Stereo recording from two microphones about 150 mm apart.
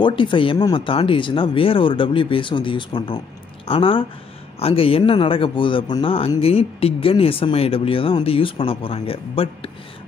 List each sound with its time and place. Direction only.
0.0 s speech: 30° left (ahead or behind)